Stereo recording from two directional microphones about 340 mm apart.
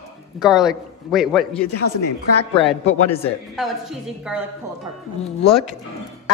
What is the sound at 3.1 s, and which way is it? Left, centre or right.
A man's voice, centre.